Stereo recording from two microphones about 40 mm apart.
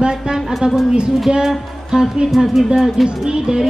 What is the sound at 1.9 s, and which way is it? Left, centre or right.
Speech, centre.